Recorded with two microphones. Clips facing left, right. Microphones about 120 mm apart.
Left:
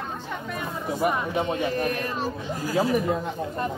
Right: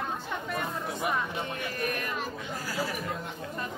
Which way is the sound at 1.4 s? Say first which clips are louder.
Left 8 dB; 25° left (ahead or behind).